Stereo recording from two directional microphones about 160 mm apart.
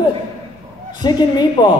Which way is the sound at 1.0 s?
25° left (ahead or behind).